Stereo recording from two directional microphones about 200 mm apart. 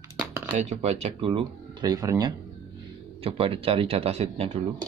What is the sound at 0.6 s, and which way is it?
Speech, 35° right (ahead or behind).